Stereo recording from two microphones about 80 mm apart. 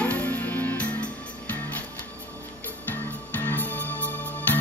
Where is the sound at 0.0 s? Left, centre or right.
Centre.